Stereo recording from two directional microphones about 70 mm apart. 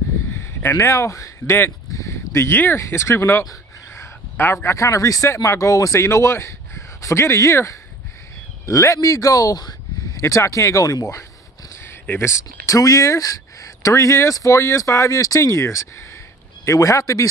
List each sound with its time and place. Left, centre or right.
0.3 s speech: left
1.9 s a sound: left
2.8 s speech: left
3.9 s a sound: left
4.6 s a man's voice: left
10.1 s speech: left
11.7 s speech: left